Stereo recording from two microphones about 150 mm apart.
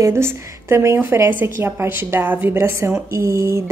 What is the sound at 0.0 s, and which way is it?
A woman's voice, 15° right (ahead or behind).